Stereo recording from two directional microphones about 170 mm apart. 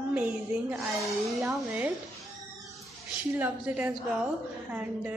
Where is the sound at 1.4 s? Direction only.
5° right (ahead or behind).